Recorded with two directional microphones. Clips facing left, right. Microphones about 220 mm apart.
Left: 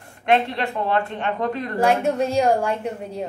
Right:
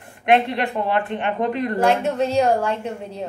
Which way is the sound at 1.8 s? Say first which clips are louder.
Left 1 dB; 10° left (ahead or behind).